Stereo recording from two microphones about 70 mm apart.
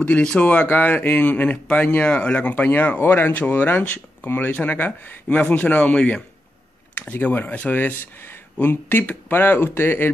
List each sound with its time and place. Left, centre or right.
0.0 s speech: centre; by 10.1 s left